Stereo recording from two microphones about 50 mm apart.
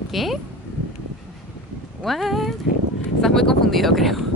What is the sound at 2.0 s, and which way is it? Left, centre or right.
Speech, centre.